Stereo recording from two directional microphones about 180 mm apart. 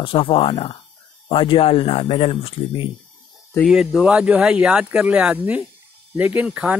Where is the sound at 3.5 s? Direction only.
Centre (ahead or behind).